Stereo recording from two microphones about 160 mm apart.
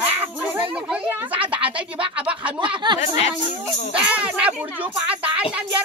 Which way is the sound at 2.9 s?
25° right (ahead or behind).